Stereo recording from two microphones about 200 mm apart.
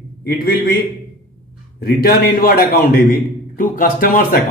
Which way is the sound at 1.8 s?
50° left (ahead or behind).